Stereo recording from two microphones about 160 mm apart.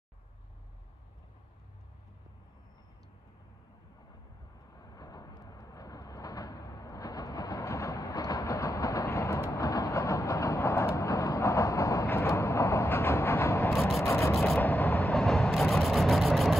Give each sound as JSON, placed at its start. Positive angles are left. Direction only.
{"t": 4.7, "sound": "vehicle", "side_deg": 25}
{"t": 13.7, "sound": "rub", "side_deg": 0}
{"t": 14.3, "sound": "vehicle", "side_deg": 0}
{"t": 14.6, "sound": "vehicle", "side_deg": 10}